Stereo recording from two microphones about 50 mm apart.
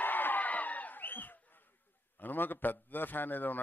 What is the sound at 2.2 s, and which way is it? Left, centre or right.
A man's voice, left.